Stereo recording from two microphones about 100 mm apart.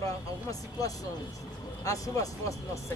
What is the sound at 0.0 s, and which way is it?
Speech, 35° left (ahead or behind).